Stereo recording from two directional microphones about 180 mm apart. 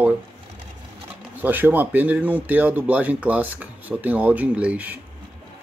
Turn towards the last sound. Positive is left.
turn(degrees=-10)  # may be behind; listen again after turning